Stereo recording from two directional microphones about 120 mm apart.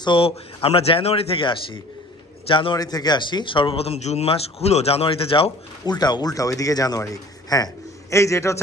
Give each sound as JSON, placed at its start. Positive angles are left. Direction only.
{"t": 0.0, "sound": "speech", "side_deg": 45}
{"t": 2.8, "sound": "speech", "side_deg": 35}
{"t": 5.9, "sound": "speech", "side_deg": 35}